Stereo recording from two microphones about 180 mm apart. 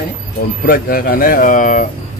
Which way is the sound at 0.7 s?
55° left (ahead or behind).